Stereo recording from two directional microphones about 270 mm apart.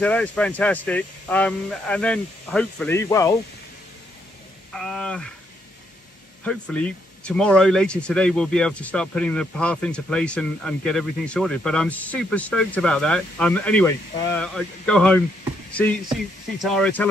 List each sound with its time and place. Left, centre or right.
0.0 s speech: centre
4.7 s speech: centre
6.4 s speech: centre